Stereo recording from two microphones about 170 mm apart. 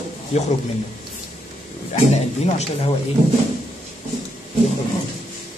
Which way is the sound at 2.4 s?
40° left (ahead or behind).